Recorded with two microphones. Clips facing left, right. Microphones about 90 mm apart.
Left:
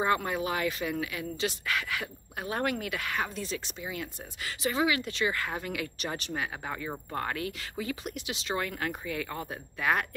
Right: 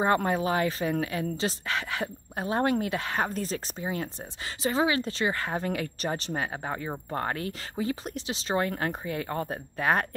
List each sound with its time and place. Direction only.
0.0 s a woman's voice: 35° right (ahead or behind)